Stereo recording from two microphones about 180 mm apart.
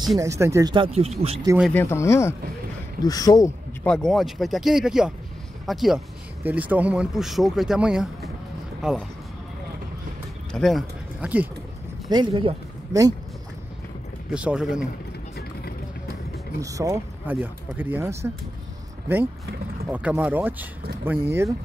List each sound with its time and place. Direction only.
0.2 s speech: 15° right (ahead or behind); by 1.4 s 35° right (ahead or behind)
1.7 s speech: 10° left (ahead or behind)
3.8 s speech: 5° left (ahead or behind)
10.5 s speech: centre (ahead or behind)
12.1 s speech: 25° right (ahead or behind)
14.3 s speech: 5° right (ahead or behind)
16.6 s speech: 20° right (ahead or behind)
19.9 s speech: 5° right (ahead or behind)